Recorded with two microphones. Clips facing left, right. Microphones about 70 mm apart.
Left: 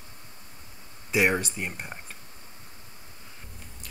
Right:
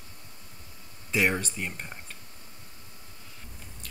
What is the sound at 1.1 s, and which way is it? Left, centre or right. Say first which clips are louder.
Speech: left 2 dB; centre.